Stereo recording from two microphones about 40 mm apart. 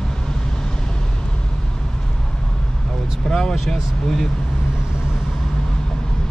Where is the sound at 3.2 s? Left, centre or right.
Centre.